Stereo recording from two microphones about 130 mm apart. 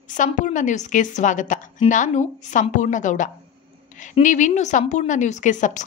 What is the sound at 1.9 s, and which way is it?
Speech, 70° left (ahead or behind).